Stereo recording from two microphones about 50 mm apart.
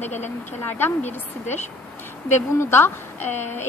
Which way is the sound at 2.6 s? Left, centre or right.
Left.